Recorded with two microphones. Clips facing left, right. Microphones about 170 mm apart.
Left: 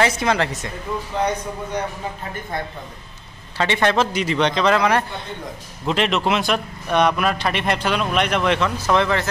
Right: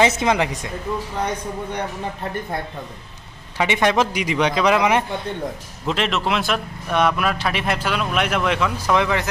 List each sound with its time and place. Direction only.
0.0 s a man's voice: 20° right (ahead or behind)
3.5 s a man's voice: 15° right (ahead or behind)
5.9 s a man's voice: centre (ahead or behind)